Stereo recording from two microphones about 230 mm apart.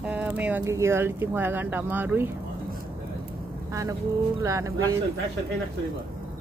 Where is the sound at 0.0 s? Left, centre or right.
Centre.